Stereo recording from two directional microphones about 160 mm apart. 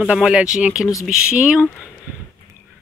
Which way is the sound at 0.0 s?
5° right (ahead or behind).